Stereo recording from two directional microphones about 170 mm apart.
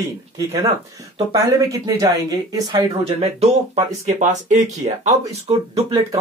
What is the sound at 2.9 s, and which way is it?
Speech, 35° right (ahead or behind).